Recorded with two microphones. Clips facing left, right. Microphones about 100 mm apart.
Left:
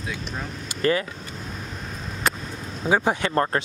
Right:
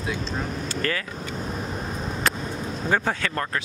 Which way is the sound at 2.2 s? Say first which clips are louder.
Left 1 dB; centre (ahead or behind).